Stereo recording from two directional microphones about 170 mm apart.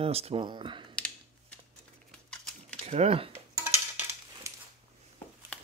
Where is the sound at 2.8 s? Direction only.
40° right (ahead or behind).